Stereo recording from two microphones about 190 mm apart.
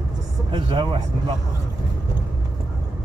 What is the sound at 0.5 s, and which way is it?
Speech, 25° right (ahead or behind).